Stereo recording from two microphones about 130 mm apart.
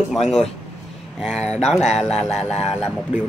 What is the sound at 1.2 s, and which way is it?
Speech, 5° left (ahead or behind).